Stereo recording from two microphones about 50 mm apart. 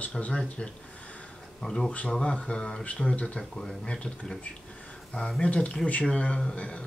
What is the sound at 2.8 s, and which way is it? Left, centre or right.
Speech, left.